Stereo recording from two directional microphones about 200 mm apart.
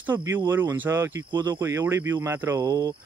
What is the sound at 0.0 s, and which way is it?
Speech, 10° right (ahead or behind).